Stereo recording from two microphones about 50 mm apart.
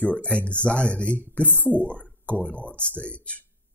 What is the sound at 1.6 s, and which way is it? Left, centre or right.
Speech, right.